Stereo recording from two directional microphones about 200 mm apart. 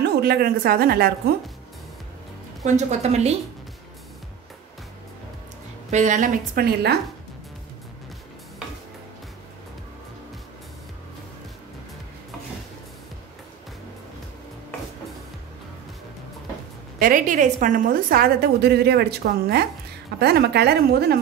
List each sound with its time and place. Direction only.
0.0 s a woman's voice: 50° right (ahead or behind)
2.6 s a woman's voice: 35° right (ahead or behind)
5.9 s a woman's voice: 35° right (ahead or behind); by 7.0 s 55° right (ahead or behind)
17.0 s a woman's voice: 40° right (ahead or behind)